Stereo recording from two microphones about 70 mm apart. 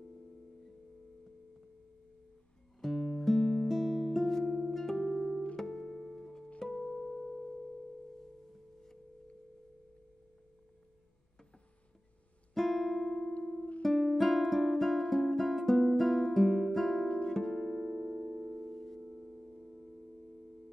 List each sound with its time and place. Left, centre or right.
2.8 s music: centre
12.5 s music: centre
17.1 s music: centre
17.4 s music: centre
18.9 s singing bowl: centre